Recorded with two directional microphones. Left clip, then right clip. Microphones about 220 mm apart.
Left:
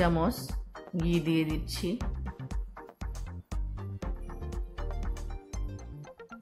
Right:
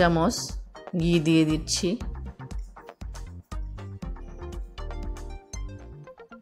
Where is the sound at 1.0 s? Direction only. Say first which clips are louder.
Right 7 dB; 25° right (ahead or behind).